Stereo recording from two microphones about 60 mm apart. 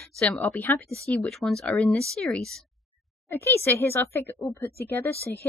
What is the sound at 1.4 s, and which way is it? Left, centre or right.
Speech, centre.